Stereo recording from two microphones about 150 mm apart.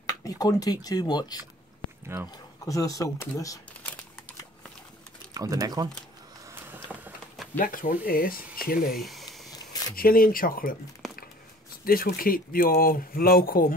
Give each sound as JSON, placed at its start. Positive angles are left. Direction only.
{"t": 0.0, "sound": "speech", "side_deg": 25}
{"t": 2.6, "sound": "speech", "side_deg": 25}
{"t": 5.3, "sound": "speech", "side_deg": -25}
{"t": 6.9, "sound": "a sound", "side_deg": 0}
{"t": 7.5, "sound": "speech", "side_deg": 65}
{"t": 9.0, "sound": "a sound", "side_deg": 0}
{"t": 9.6, "sound": "a sound", "side_deg": 25}
{"t": 9.9, "sound": "speech", "side_deg": 75}
{"t": 11.8, "sound": "speech", "side_deg": 75}